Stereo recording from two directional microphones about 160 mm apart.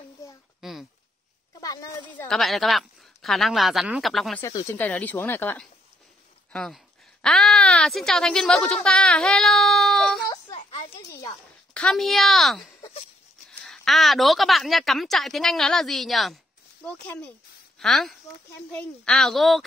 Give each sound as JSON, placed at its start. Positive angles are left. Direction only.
{"t": 0.6, "sound": "a sound", "side_deg": 0}
{"t": 1.6, "sound": "a woman's voice", "side_deg": 20}
{"t": 2.2, "sound": "a woman's voice", "side_deg": 0}
{"t": 4.4, "sound": "speech", "side_deg": 20}
{"t": 10.3, "sound": "a sound", "side_deg": 35}
{"t": 11.0, "sound": "a child's voice", "side_deg": 20}
{"t": 11.7, "sound": "a woman's voice", "side_deg": 5}